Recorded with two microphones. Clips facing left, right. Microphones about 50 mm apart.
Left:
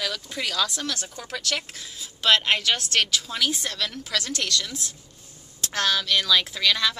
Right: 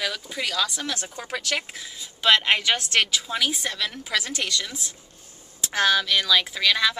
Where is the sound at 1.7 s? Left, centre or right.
Centre.